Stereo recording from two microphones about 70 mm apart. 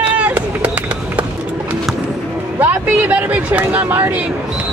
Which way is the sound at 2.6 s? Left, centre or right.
Right.